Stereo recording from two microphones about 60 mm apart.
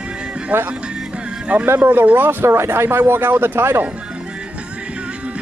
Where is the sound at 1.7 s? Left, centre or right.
Right.